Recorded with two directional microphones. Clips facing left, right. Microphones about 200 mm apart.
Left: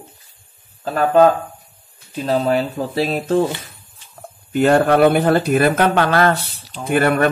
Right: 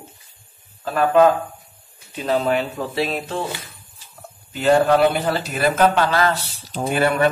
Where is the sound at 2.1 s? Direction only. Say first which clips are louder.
Left 2 dB; 35° left (ahead or behind).